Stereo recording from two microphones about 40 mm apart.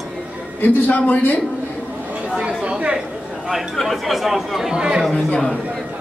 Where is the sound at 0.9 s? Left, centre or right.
Left.